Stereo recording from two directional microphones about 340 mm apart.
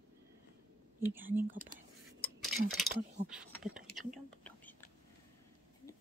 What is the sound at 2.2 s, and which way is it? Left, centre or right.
Cutlery, centre.